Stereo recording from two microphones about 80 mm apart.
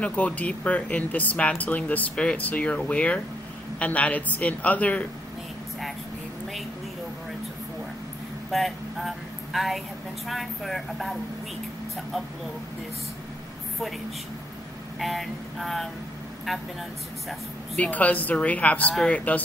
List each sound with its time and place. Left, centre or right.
0.0 s speech: centre
8.5 s a sound: centre
10.2 s speech: centre
15.0 s speech: centre
17.7 s speech: centre